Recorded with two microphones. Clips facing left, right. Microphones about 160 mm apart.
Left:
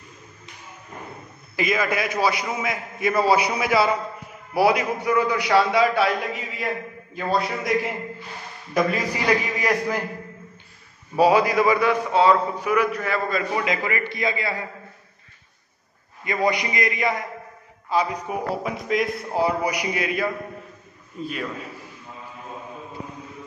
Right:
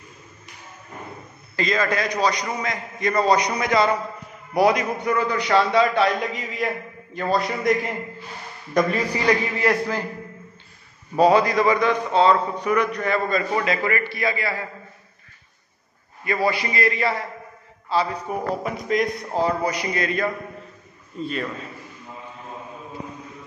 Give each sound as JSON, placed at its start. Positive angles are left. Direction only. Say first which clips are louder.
{"t": 1.6, "sound": "a man's voice", "louder": "right 1 dB", "side_deg": 10}
{"t": 11.1, "sound": "a man's voice", "louder": "right 1 dB", "side_deg": 10}
{"t": 13.7, "sound": "a man's voice", "louder": "right 2 dB", "side_deg": 15}
{"t": 16.3, "sound": "a man's voice", "louder": "even", "side_deg": 20}
{"t": 18.6, "sound": "a man's voice", "louder": "right 1 dB", "side_deg": 0}